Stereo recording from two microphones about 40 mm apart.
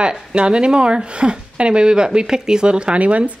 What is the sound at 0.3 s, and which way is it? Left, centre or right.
Speech, right.